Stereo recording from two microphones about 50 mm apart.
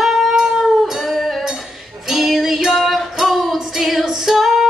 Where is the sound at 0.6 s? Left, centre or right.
Centre.